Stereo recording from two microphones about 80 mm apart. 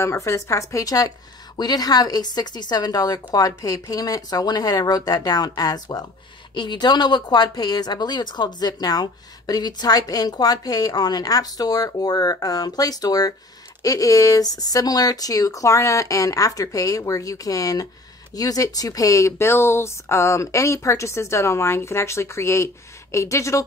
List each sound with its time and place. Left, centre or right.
0.0 s speech: left
6.5 s speech: left